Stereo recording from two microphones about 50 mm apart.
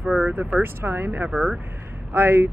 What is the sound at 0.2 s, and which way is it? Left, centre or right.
Speech, right.